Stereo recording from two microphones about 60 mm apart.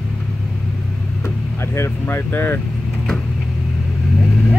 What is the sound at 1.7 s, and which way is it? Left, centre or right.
Speech, left.